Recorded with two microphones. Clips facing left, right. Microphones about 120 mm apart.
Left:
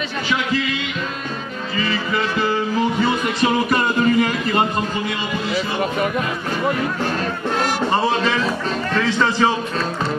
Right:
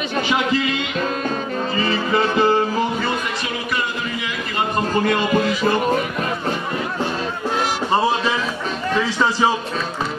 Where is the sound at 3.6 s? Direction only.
45° left (ahead or behind).